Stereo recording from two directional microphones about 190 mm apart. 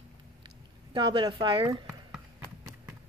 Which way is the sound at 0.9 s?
25° right (ahead or behind).